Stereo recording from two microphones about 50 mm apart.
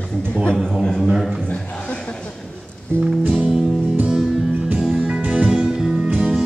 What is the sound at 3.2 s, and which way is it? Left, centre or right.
Music, right.